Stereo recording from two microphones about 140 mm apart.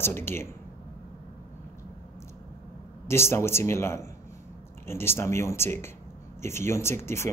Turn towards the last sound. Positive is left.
turn(degrees=20)  # may be behind; listen again after turning